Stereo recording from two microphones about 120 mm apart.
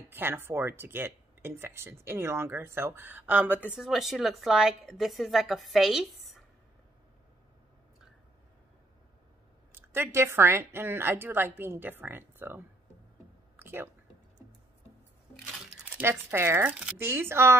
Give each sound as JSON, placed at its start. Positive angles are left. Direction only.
{"t": 0.1, "sound": "speech", "side_deg": -20}
{"t": 3.7, "sound": "a woman's voice", "side_deg": -5}
{"t": 9.7, "sound": "speech", "side_deg": -20}
{"t": 13.6, "sound": "a sound", "side_deg": -15}
{"t": 15.9, "sound": "speech", "side_deg": -20}